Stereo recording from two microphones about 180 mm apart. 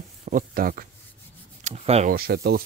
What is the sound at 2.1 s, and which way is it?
Speech, 60° right (ahead or behind).